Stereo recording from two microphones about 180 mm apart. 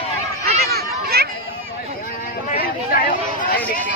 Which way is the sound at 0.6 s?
60° right (ahead or behind).